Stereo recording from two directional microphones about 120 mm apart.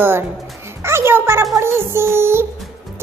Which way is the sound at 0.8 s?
20° right (ahead or behind).